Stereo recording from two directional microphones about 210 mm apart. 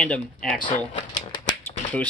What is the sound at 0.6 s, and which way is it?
Shuffling cards, 20° left (ahead or behind).